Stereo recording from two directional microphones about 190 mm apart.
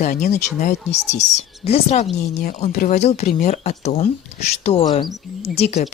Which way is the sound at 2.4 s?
45° left (ahead or behind).